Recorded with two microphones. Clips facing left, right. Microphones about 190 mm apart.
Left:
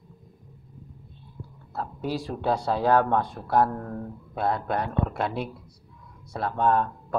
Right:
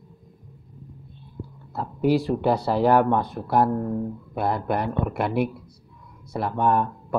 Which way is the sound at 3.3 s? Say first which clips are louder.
Right 2 dB; 15° right (ahead or behind).